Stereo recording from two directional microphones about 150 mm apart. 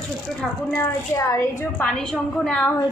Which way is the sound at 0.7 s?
20° left (ahead or behind).